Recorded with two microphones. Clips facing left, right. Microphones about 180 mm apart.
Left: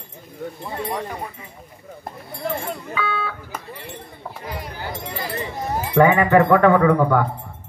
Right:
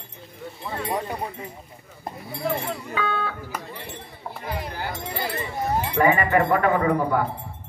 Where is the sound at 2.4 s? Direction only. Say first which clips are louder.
Even; centre (ahead or behind).